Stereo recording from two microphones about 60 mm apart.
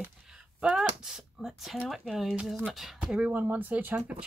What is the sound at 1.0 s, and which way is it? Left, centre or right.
Speech, centre.